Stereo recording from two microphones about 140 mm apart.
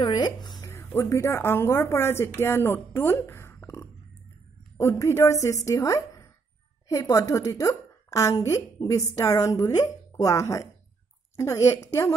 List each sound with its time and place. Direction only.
0.0 s speech: 30° left (ahead or behind)
0.7 s a woman's voice: 20° left (ahead or behind)